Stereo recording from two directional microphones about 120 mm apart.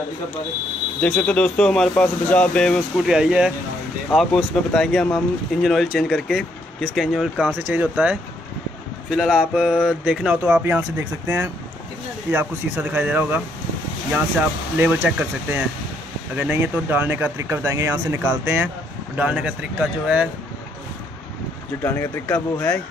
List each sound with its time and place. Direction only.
1.0 s speech: 15° left (ahead or behind)
3.1 s speech: 5° right (ahead or behind)
7.5 s speech: 15° right (ahead or behind)
10.6 s speech: 20° right (ahead or behind)
14.8 s speech: 15° right (ahead or behind)
19.1 s speech: 10° right (ahead or behind)
21.8 s speech: 20° left (ahead or behind)